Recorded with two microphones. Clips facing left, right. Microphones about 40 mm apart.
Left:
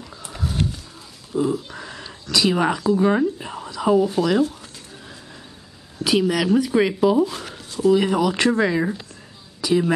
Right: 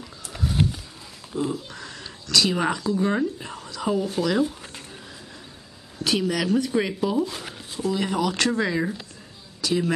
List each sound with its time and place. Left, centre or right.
0.3 s roaring cats: centre
1.3 s speech: centre
1.8 s speech: centre
6.0 s speech: centre
7.2 s speech: centre
7.8 s speech: centre